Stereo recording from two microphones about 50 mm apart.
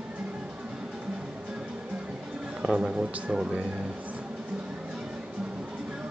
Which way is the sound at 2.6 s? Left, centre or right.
Centre.